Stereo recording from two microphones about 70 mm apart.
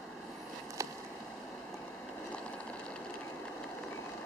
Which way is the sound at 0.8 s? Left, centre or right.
Right.